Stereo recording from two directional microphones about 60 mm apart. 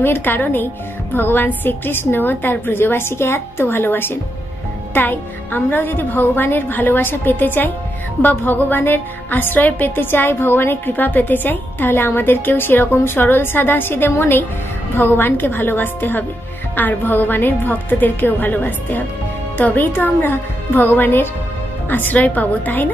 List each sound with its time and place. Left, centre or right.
0.0 s a woman's voice: left